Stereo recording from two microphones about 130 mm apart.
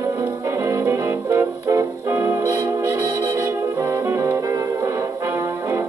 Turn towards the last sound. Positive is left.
turn(degrees=-20)  # may be behind; listen again after turning